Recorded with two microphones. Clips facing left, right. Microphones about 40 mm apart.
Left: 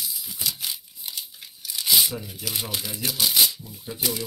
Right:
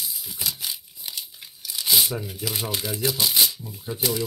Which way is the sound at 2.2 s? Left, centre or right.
Right.